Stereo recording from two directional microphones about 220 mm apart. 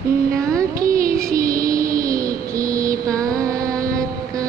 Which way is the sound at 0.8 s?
40° right (ahead or behind).